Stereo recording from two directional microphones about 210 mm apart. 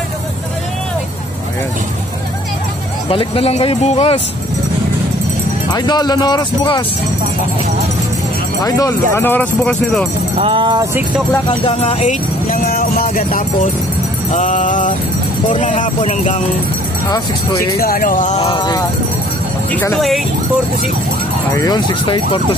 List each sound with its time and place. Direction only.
3.1 s speech: 25° left (ahead or behind)
5.7 s speech: 20° left (ahead or behind)
8.6 s speech: 15° left (ahead or behind)
10.3 s speech: 25° right (ahead or behind)
11.4 s speech: 30° left (ahead or behind)
17.7 s speech: 45° left (ahead or behind)
18.4 s speech: 20° left (ahead or behind)
19.7 s speech: 5° left (ahead or behind)
21.5 s speech: 20° left (ahead or behind)